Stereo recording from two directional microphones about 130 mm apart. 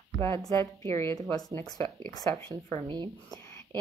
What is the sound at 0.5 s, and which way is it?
A woman's voice, 20° left (ahead or behind).